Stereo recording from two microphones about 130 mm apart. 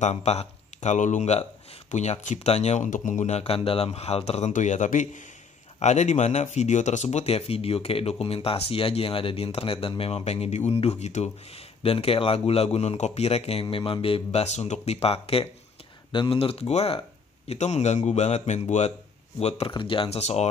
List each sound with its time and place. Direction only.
0.0 s speech: 55° left (ahead or behind); by 5.2 s 75° left (ahead or behind)
5.8 s speech: 60° left (ahead or behind)
19.4 s speech: 45° left (ahead or behind)